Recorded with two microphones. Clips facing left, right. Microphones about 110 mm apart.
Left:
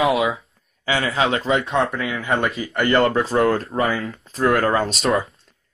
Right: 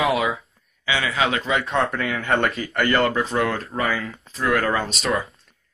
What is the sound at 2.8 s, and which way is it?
A man's voice, 30° left (ahead or behind).